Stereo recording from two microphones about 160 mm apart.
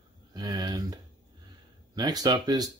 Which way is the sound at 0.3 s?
25° right (ahead or behind).